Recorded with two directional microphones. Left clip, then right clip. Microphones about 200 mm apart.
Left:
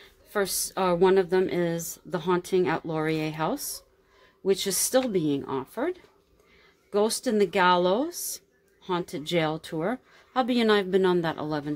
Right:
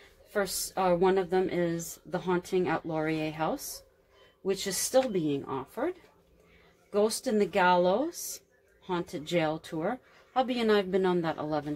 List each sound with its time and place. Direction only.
0.3 s a woman's voice: 45° left (ahead or behind)